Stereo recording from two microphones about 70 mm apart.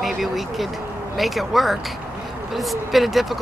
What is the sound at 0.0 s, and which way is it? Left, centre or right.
Speech, centre.